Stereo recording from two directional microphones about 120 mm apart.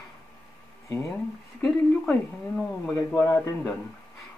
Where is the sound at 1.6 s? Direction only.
5° left (ahead or behind).